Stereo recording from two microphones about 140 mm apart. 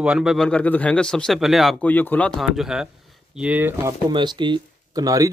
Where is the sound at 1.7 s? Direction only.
10° left (ahead or behind).